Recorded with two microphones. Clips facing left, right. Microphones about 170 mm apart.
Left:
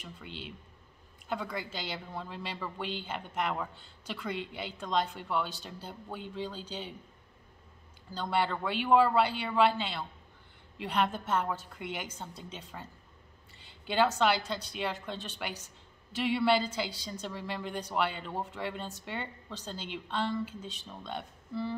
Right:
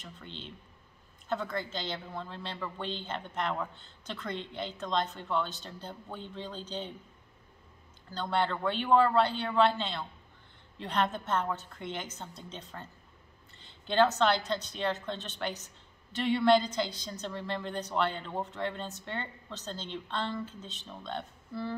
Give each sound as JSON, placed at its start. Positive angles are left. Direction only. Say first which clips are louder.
{"t": 0.0, "sound": "a woman's voice", "louder": "left 1 dB", "side_deg": 10}
{"t": 8.1, "sound": "a woman's voice", "louder": "even", "side_deg": 10}